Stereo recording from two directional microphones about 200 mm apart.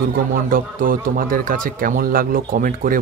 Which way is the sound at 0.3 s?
45° right (ahead or behind).